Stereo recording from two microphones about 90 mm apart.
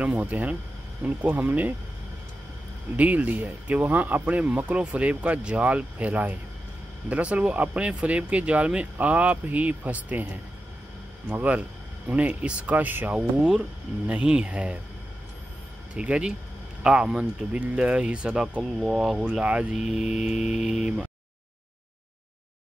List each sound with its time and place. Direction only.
0.0 s speech: 15° right (ahead or behind)
3.0 s speech: 15° right (ahead or behind)
11.2 s speech: 15° right (ahead or behind)
15.9 s speech: 10° right (ahead or behind)